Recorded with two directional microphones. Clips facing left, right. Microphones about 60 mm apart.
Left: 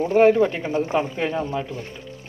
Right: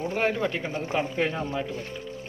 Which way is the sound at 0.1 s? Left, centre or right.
Centre.